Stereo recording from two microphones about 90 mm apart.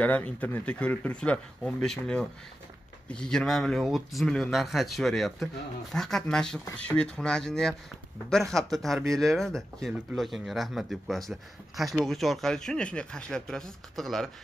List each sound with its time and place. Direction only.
0.0 s speech: 15° left (ahead or behind)